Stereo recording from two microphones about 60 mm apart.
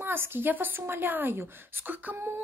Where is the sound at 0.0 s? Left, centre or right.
Right.